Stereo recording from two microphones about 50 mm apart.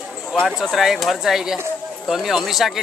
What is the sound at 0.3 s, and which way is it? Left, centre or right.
Speech, centre.